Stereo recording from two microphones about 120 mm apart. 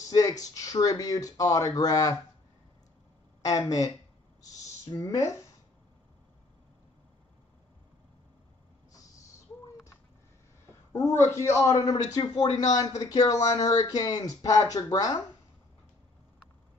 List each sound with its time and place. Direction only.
0.1 s speech: 30° left (ahead or behind)
3.4 s a man's voice: 30° left (ahead or behind)
4.4 s a sound: 30° left (ahead or behind)
10.9 s a man's voice: 20° left (ahead or behind)